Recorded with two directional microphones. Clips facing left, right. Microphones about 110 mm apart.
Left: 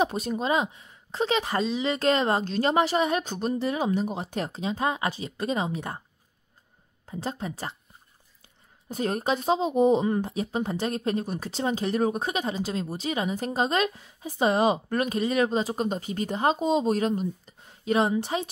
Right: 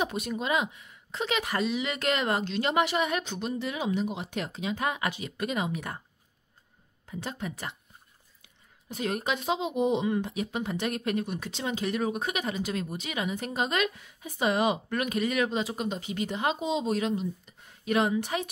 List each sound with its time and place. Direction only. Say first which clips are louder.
0.0 s speech: left 4 dB; 35° left (ahead or behind)
7.1 s speech: left 3 dB; 35° left (ahead or behind)
8.8 s speech: left 4 dB; 35° left (ahead or behind)
17.6 s a woman's voice: left 2 dB; 30° left (ahead or behind)